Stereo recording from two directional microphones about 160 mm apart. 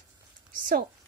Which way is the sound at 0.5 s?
55° right (ahead or behind).